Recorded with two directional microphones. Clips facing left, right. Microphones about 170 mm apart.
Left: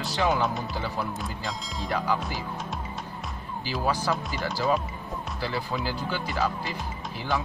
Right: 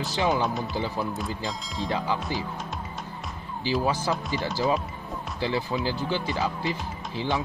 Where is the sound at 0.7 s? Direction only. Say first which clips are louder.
Right 2 dB; 20° right (ahead or behind).